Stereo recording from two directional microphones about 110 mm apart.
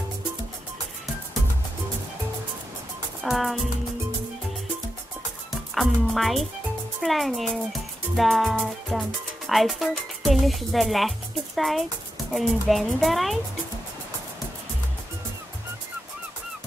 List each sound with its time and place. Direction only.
3.2 s music: centre (ahead or behind)
5.8 s speech: centre (ahead or behind)